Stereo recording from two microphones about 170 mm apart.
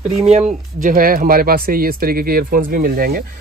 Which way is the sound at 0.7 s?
55° right (ahead or behind).